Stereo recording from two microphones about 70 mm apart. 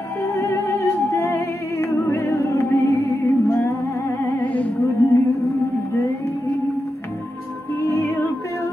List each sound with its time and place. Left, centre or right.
0.2 s music: left
4.4 s music: left
7.8 s music: left